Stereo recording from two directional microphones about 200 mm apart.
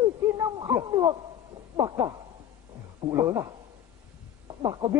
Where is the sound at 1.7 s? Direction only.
20° right (ahead or behind).